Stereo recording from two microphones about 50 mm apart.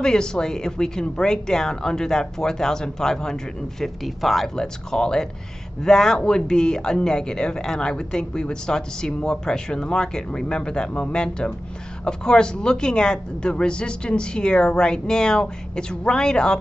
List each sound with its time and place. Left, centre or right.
0.0 s a woman's voice: centre